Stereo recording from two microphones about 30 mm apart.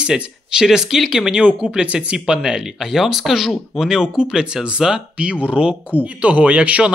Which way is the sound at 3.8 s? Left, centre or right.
Right.